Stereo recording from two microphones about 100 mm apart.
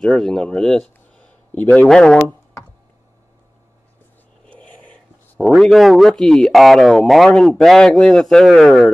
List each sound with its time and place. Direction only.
0.0 s speech: 5° left (ahead or behind)
4.5 s a sound: 15° left (ahead or behind)
5.4 s speech: centre (ahead or behind)